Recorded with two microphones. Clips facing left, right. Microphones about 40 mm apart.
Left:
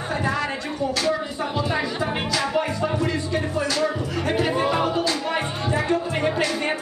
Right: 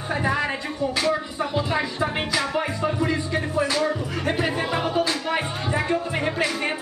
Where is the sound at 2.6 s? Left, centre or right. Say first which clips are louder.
Left 1 dB; centre.